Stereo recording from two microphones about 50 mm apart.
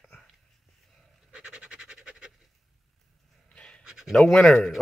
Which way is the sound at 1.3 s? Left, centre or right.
Centre.